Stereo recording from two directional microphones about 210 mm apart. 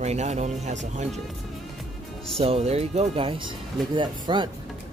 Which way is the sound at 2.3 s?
30° right (ahead or behind).